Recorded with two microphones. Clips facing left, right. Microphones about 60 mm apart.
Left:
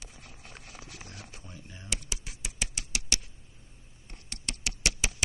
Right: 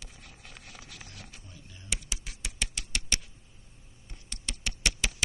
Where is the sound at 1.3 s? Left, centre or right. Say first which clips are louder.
Left 3 dB; left.